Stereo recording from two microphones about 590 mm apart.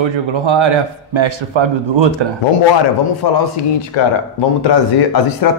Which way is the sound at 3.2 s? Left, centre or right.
Left.